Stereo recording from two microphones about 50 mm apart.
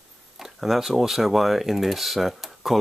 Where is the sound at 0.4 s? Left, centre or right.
Centre.